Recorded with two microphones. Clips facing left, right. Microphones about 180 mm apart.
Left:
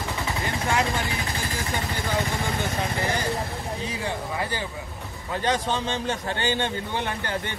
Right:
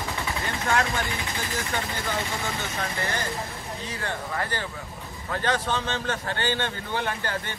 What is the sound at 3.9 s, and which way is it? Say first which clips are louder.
A man's voice: left 2 dB; 10° left (ahead or behind).